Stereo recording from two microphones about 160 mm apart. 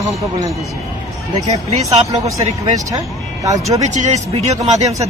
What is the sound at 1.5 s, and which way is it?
Speech, 45° right (ahead or behind).